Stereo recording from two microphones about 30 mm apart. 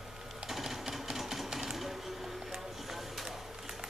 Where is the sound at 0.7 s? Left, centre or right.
Centre.